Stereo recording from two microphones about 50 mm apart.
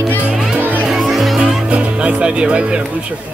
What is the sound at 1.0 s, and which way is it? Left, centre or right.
Music, centre.